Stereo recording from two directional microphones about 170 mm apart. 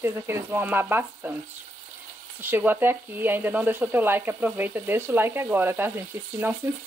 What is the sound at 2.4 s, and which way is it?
Speech, 10° right (ahead or behind).